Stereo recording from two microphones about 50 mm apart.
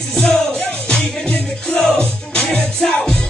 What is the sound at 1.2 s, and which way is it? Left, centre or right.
Music, left.